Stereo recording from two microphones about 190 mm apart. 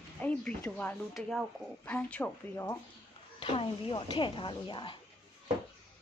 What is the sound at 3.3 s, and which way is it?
Speech, 25° left (ahead or behind).